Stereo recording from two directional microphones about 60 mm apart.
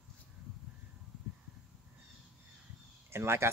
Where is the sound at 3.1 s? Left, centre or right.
Right.